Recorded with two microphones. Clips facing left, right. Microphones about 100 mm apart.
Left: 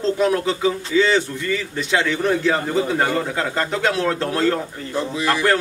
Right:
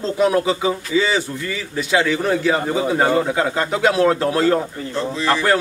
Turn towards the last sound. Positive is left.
turn(degrees=15)  # may be behind; listen again after turning